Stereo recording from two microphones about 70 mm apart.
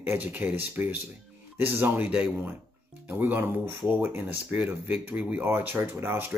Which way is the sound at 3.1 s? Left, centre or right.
Right.